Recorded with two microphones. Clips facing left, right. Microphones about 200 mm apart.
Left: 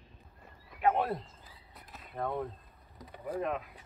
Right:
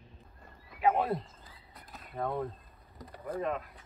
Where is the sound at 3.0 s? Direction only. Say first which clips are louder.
Even; 5° left (ahead or behind).